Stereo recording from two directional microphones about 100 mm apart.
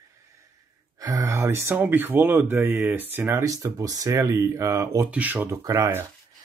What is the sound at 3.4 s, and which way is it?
Speech, 35° right (ahead or behind).